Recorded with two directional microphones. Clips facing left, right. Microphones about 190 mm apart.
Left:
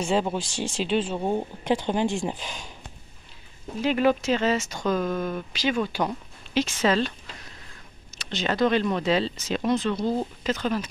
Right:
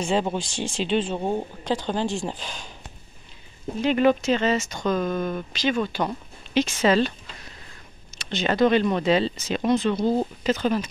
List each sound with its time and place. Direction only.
0.0 s speech: 5° left (ahead or behind)
1.6 s speech: 20° left (ahead or behind)
3.8 s speech: 5° left (ahead or behind)
6.0 s a sound: 5° left (ahead or behind)
6.8 s speech: 5° right (ahead or behind)
8.2 s speech: centre (ahead or behind)